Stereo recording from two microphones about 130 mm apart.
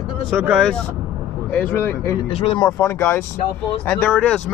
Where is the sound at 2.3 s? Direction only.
45° left (ahead or behind).